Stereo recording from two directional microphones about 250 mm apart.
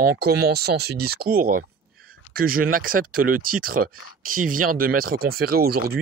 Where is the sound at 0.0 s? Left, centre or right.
Right.